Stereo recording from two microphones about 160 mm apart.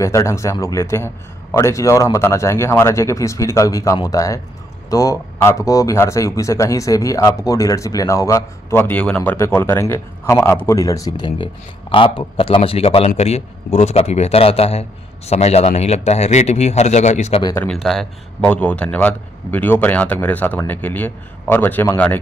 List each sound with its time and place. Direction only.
0.0 s a man's voice: 20° left (ahead or behind); by 17.4 s 45° left (ahead or behind)
17.8 s speech: 5° left (ahead or behind)